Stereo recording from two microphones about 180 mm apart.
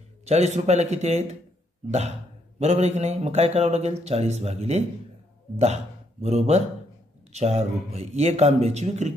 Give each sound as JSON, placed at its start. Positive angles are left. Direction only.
{"t": 0.3, "sound": "speech", "side_deg": -40}
{"t": 6.2, "sound": "speech", "side_deg": -35}